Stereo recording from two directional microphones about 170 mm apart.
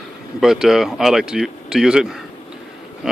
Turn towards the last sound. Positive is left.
turn(degrees=0)  # may be behind; listen again after turning